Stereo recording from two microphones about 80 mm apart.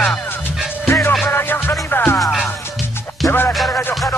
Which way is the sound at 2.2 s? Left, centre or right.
Centre.